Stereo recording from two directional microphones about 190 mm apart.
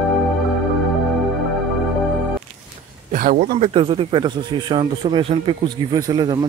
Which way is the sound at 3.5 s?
30° right (ahead or behind).